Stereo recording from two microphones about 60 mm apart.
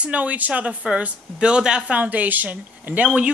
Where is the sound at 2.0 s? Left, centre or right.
Right.